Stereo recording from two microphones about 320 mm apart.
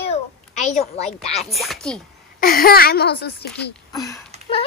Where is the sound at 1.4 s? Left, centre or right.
Centre.